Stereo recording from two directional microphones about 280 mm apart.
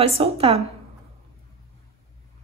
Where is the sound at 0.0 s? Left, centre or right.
Right.